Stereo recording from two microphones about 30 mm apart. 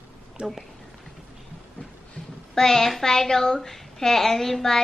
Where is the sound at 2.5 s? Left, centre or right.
Centre.